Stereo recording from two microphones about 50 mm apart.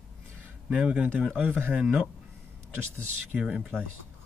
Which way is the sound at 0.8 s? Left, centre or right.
Right.